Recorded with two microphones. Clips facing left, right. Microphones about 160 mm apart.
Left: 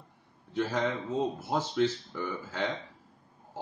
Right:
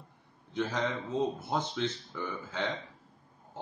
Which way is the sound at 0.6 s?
5° left (ahead or behind).